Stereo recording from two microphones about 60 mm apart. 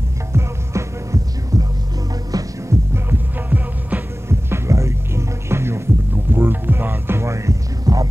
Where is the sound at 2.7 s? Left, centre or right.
Right.